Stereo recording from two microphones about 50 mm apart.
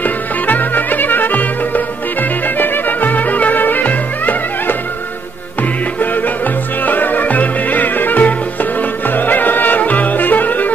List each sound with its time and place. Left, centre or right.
0.0 s music: left